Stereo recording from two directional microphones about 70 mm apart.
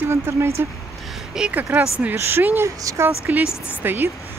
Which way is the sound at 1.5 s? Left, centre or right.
Right.